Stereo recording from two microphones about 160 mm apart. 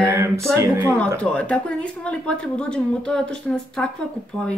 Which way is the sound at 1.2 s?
5° left (ahead or behind).